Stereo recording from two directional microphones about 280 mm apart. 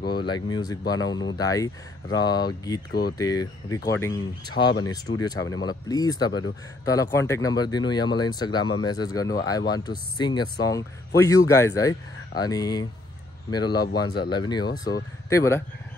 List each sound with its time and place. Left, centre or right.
0.2 s speech: centre
2.9 s speech: left
3.2 s speech: centre